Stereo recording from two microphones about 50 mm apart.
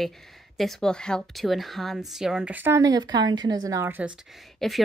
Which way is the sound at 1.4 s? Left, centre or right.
Centre.